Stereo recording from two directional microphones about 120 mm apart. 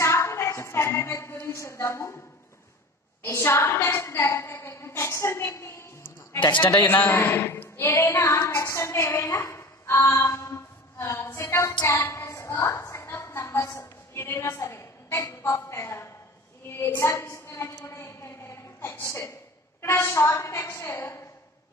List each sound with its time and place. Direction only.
0.0 s a sound: 25° left (ahead or behind)
3.3 s a woman's voice: 20° left (ahead or behind)
6.4 s a man's voice: 45° left (ahead or behind)
6.9 s a woman's voice: 15° left (ahead or behind)
11.9 s a sound: 20° left (ahead or behind)
12.7 s a woman's voice: 20° left (ahead or behind)